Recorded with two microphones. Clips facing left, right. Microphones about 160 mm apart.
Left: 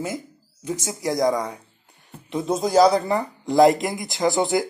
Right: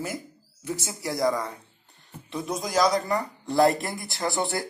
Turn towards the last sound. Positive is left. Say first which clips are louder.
# left 7 dB
turn(degrees=20)  # may be behind; listen again after turning